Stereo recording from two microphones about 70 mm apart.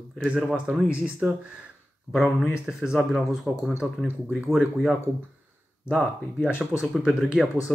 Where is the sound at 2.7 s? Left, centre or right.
Centre.